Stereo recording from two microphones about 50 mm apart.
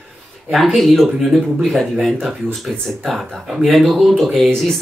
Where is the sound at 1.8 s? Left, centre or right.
Centre.